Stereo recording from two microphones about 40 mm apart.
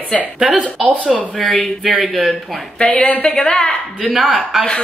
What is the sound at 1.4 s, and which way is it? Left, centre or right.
Speech, centre.